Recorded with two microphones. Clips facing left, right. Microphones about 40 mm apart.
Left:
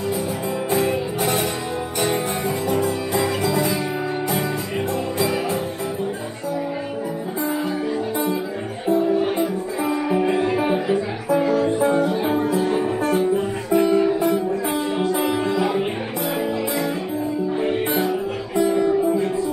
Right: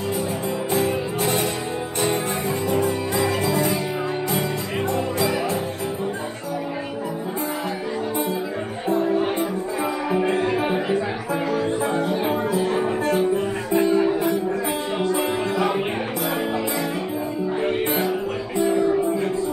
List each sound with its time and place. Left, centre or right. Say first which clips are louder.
3.4 s music: left 1 dB; centre
8.8 s music: left 3 dB; right
10.4 s music: left 2 dB; centre
13.7 s music: left 2 dB; right
15.2 s music: left 1 dB; right
17.6 s music: even; centre